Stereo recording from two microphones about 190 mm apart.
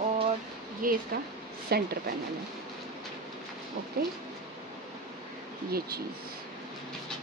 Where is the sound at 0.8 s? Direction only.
50° right (ahead or behind).